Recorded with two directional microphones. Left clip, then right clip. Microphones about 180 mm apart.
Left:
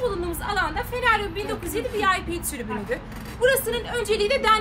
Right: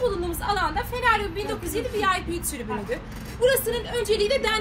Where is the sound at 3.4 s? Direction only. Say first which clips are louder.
Left 1 dB; 15° left (ahead or behind).